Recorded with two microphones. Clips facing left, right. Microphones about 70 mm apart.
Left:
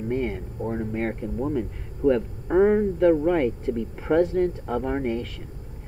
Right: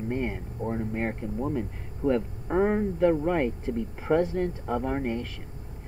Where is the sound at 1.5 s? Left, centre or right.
Centre.